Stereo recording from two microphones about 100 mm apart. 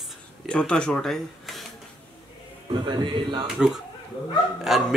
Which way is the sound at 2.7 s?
50° right (ahead or behind).